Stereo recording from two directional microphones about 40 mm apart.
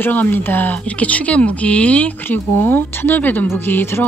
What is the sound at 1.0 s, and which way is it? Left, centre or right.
A woman's voice, left.